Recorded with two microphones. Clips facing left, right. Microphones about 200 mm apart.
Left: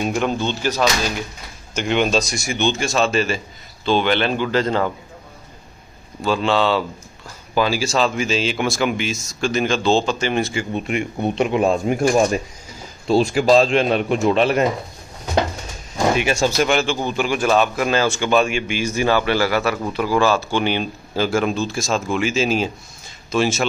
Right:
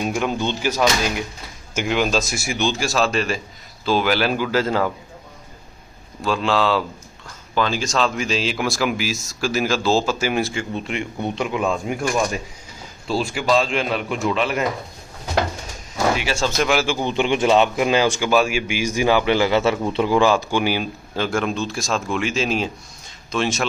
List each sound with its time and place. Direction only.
0.0 s speech: 5° right (ahead or behind)
6.2 s speech: centre (ahead or behind)
11.0 s speech: 15° left (ahead or behind)
11.6 s speech: 35° left (ahead or behind)
16.0 s speech: 15° left (ahead or behind)
16.5 s speech: centre (ahead or behind)
17.1 s speech: 20° right (ahead or behind); by 23.6 s 5° left (ahead or behind)